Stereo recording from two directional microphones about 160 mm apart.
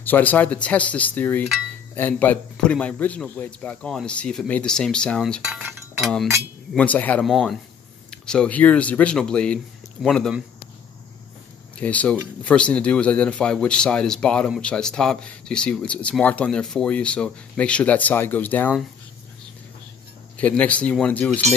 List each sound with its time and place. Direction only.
0.0 s a man's voice: 10° left (ahead or behind)
5.6 s chink: 15° right (ahead or behind)
6.7 s a man's voice: 10° left (ahead or behind)
11.8 s a man's voice: 10° left (ahead or behind)
20.3 s a man's voice: 10° left (ahead or behind)